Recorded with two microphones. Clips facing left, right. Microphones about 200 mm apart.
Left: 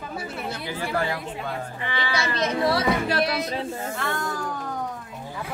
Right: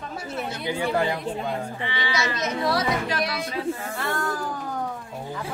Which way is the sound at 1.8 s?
50° left (ahead or behind).